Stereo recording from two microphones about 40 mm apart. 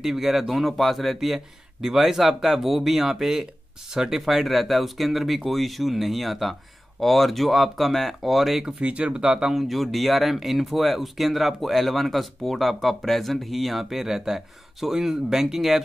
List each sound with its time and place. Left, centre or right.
0.0 s a man's voice: centre
8.6 s speech: right
9.7 s speech: centre